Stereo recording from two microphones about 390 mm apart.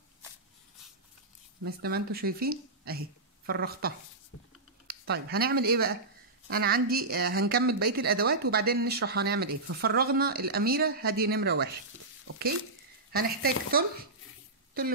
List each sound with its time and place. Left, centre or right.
1.6 s speech: right
12.3 s a sound: right
13.1 s speech: right